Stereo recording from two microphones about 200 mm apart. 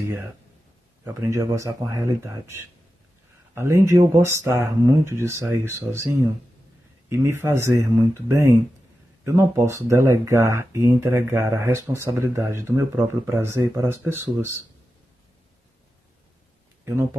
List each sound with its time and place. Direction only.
1.0 s speech: 15° right (ahead or behind)
16.8 s speech: 15° right (ahead or behind)